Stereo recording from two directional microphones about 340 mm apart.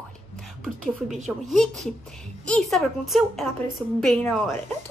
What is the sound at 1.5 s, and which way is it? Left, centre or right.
A woman's voice, centre.